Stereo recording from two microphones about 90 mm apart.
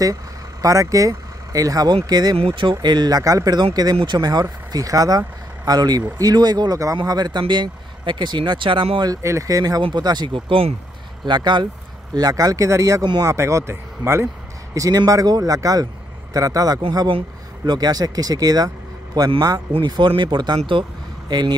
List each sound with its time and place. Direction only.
0.0 s speech: 40° right (ahead or behind)
2.3 s speech: 70° right (ahead or behind)
2.7 s speech: 55° right (ahead or behind); by 9.0 s 70° right (ahead or behind)
9.0 s speech: 40° right (ahead or behind)
9.9 s speech: 55° right (ahead or behind); by 10.7 s 80° right
11.2 s speech: 55° right (ahead or behind); by 14.2 s 30° right (ahead or behind)
14.7 s speech: 40° right (ahead or behind)